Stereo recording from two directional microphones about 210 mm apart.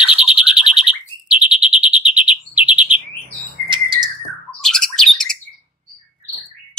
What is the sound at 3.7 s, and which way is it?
Bird, 25° right (ahead or behind).